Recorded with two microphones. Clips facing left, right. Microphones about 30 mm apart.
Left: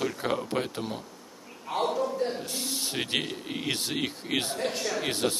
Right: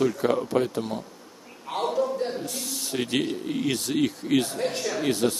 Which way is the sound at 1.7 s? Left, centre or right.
Centre.